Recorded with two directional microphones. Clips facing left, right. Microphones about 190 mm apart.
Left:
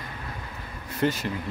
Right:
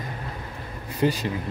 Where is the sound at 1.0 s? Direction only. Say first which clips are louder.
Right 2 dB; 15° right (ahead or behind).